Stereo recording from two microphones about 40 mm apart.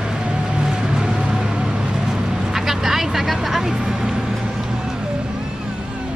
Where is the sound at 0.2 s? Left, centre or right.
Right.